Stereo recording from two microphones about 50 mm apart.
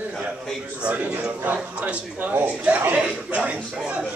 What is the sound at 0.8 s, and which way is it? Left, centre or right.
A man's voice, right.